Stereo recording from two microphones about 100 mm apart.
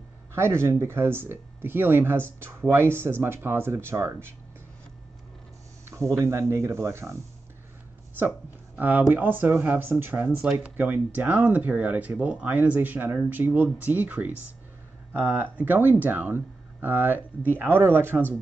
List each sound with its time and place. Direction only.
0.3 s speech: 25° right (ahead or behind)
5.9 s speech: 25° right (ahead or behind)
8.7 s speech: 15° right (ahead or behind)